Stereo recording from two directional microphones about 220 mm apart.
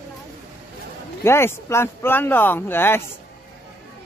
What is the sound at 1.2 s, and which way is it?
Speech, 10° left (ahead or behind).